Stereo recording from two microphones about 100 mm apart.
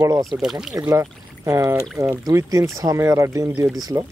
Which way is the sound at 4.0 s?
60° right (ahead or behind).